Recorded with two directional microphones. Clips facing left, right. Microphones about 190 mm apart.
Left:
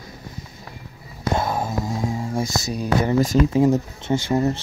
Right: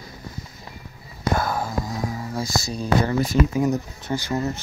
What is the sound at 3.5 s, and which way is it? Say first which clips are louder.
Speech: left 5 dB; 25° left (ahead or behind).